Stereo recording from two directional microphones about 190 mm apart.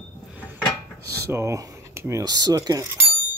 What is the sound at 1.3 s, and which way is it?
Speech, 15° right (ahead or behind).